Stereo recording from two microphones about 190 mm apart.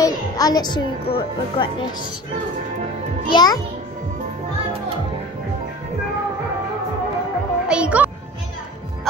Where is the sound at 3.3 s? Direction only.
20° left (ahead or behind).